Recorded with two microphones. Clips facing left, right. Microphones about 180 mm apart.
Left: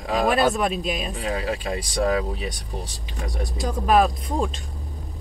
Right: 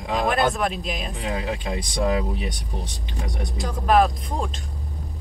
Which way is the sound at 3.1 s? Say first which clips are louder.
Left 1 dB; 20° right (ahead or behind).